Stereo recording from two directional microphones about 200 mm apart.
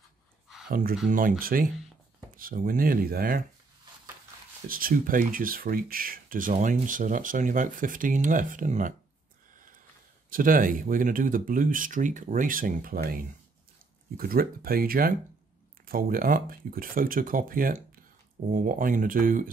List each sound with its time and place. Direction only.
0.7 s speech: 45° right (ahead or behind)
4.6 s speech: 45° right (ahead or behind)
10.3 s speech: 45° right (ahead or behind)